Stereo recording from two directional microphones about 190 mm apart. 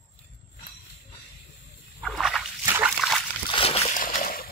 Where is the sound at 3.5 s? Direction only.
30° left (ahead or behind).